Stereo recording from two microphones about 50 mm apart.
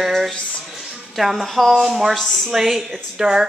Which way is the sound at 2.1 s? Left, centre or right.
Centre.